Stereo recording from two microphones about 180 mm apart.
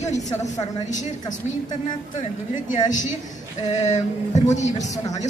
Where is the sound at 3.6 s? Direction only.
40° left (ahead or behind).